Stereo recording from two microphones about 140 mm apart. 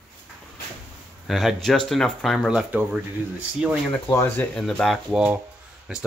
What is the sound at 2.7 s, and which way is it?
Speech, 10° right (ahead or behind).